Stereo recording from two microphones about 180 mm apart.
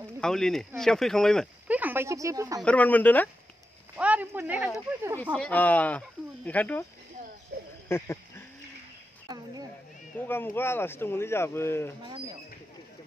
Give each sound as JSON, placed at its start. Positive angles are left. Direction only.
{"t": 0.2, "sound": "speech", "side_deg": 5}
{"t": 1.7, "sound": "speech", "side_deg": -10}
{"t": 2.6, "sound": "speech", "side_deg": 10}
{"t": 3.9, "sound": "speech", "side_deg": -5}
{"t": 5.2, "sound": "speech", "side_deg": 10}
{"t": 9.3, "sound": "a woman's voice", "side_deg": -20}
{"t": 10.1, "sound": "speech", "side_deg": 10}
{"t": 12.0, "sound": "speech", "side_deg": -25}